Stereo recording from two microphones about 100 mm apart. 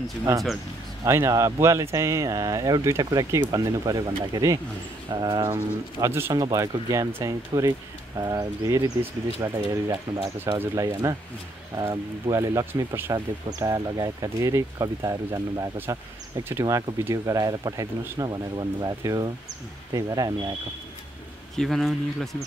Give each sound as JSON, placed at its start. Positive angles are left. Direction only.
{"t": 1.0, "sound": "speech", "side_deg": -30}
{"t": 5.9, "sound": "speech", "side_deg": -30}
{"t": 21.5, "sound": "speech", "side_deg": 0}